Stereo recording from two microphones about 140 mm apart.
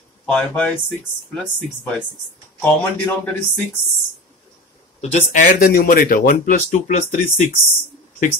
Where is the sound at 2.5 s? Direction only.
10° left (ahead or behind).